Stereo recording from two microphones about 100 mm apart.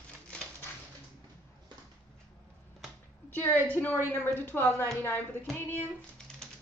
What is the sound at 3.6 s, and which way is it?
A woman's voice, 15° left (ahead or behind).